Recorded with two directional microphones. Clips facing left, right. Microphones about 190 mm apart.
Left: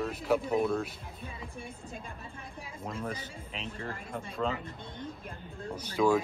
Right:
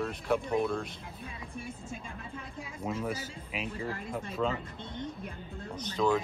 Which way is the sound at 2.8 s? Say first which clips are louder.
Right 3 dB; 10° right (ahead or behind).